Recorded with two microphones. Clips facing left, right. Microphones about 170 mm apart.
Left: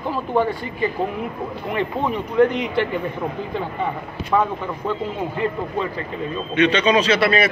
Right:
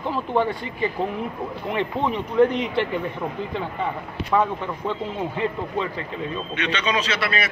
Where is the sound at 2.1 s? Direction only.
30° right (ahead or behind).